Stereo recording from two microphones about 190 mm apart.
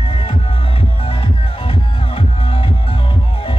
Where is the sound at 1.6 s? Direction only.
30° left (ahead or behind).